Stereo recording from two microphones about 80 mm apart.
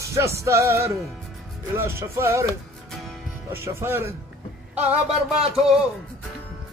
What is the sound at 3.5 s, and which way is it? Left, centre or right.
Music, right.